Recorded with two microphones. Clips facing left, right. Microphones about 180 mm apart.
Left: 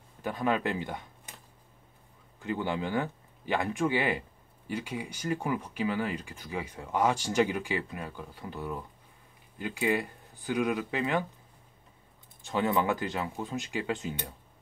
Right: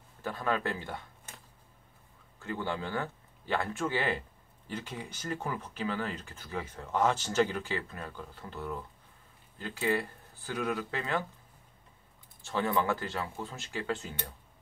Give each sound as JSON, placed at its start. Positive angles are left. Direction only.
{"t": 0.2, "sound": "speech", "side_deg": 15}
{"t": 2.3, "sound": "speech", "side_deg": 15}
{"t": 12.4, "sound": "speech", "side_deg": 15}